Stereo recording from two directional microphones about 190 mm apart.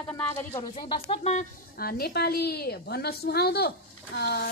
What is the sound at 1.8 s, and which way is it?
A woman's voice, 55° left (ahead or behind).